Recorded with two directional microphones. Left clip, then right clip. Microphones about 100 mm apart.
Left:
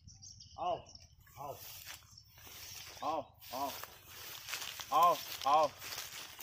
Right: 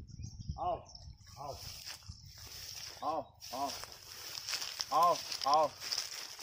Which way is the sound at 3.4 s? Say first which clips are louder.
Right 1 dB; centre (ahead or behind).